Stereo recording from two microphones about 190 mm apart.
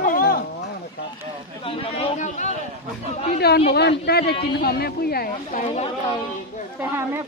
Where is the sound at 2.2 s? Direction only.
40° left (ahead or behind).